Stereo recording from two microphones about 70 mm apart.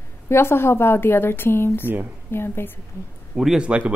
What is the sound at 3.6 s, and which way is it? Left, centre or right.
Speech, centre.